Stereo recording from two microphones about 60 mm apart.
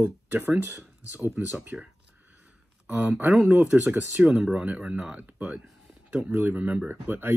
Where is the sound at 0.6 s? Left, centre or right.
Right.